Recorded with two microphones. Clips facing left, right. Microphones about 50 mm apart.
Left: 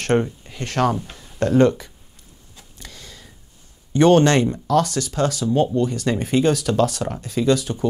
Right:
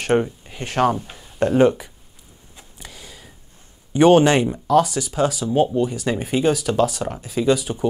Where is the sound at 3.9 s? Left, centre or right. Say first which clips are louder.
Right 1 dB; centre.